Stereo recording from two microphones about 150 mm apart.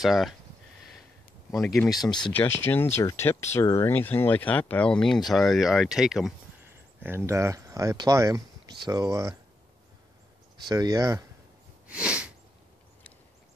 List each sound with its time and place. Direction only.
0.0 s speech: centre (ahead or behind)
1.5 s speech: 5° left (ahead or behind)
2.0 s speech: 30° left (ahead or behind)
2.3 s speech: 15° left (ahead or behind); by 6.3 s 5° right (ahead or behind)
7.0 s speech: 15° right (ahead or behind)
10.7 s speech: 25° right (ahead or behind)
11.9 s sneeze: 5° right (ahead or behind)